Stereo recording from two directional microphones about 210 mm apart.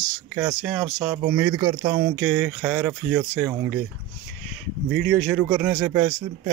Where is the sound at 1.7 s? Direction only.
30° right (ahead or behind).